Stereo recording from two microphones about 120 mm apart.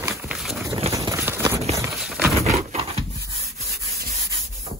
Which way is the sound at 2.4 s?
65° right (ahead or behind).